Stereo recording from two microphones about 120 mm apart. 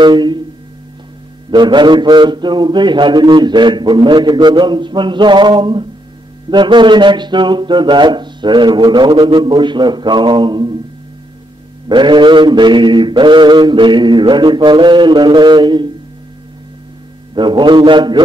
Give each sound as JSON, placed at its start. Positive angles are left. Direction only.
{"t": 0.0, "sound": "a man's voice", "side_deg": -40}
{"t": 1.5, "sound": "a man's voice", "side_deg": -40}
{"t": 11.9, "sound": "a man's voice", "side_deg": -40}
{"t": 17.4, "sound": "a man's voice", "side_deg": -40}